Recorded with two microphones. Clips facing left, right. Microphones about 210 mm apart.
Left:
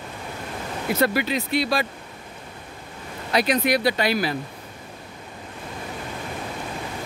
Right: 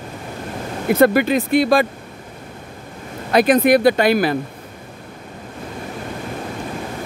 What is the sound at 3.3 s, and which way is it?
Speech, 50° right (ahead or behind).